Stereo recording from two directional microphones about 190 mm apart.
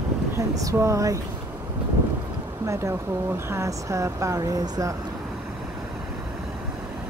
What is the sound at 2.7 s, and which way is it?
Speech, 15° right (ahead or behind).